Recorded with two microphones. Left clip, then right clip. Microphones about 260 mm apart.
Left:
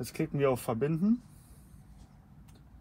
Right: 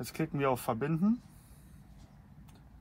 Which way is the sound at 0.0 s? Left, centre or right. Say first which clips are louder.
Left 3 dB; centre.